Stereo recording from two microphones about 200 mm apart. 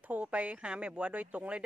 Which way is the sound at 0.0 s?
10° right (ahead or behind).